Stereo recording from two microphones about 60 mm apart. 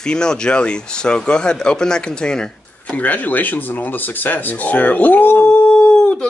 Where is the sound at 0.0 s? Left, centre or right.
Centre.